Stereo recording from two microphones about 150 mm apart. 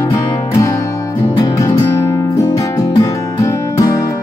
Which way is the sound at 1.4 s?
20° left (ahead or behind).